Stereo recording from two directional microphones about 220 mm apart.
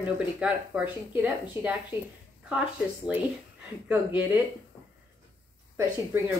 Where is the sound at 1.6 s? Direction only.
25° left (ahead or behind).